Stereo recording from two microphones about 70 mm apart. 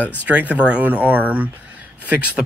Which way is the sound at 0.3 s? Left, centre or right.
Right.